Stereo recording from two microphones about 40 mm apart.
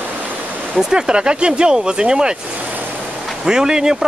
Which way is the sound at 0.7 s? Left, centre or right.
Centre.